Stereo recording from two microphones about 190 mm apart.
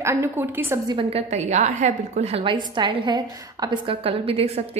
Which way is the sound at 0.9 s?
30° right (ahead or behind).